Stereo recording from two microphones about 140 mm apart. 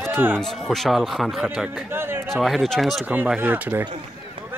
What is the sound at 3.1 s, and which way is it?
Speech, 10° right (ahead or behind).